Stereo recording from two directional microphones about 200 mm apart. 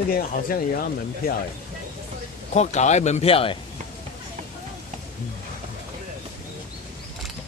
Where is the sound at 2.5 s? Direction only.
35° left (ahead or behind).